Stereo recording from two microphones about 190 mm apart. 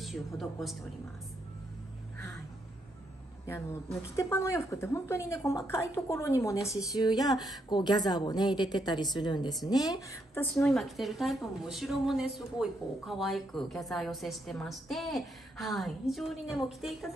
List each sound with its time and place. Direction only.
0.0 s a woman's voice: centre (ahead or behind)
3.4 s a woman's voice: 15° left (ahead or behind)